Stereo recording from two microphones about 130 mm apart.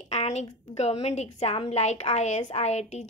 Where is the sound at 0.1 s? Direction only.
60° left (ahead or behind).